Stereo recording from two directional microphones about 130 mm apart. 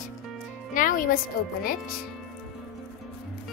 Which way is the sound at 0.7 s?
90° left.